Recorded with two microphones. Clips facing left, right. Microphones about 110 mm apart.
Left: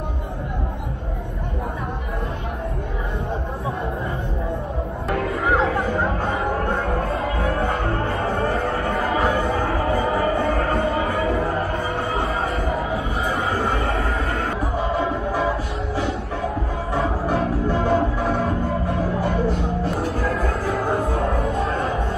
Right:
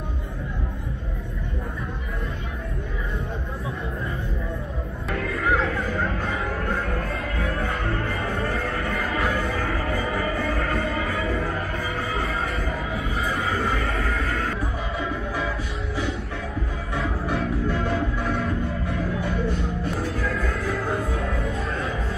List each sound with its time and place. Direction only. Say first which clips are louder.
5.1 s music: left 3 dB; 25° left (ahead or behind)
12.7 s a sound: left 4 dB; 30° left (ahead or behind)
13.7 s music: left 3 dB; 30° left (ahead or behind)
16.9 s music: left 5 dB; 35° left (ahead or behind)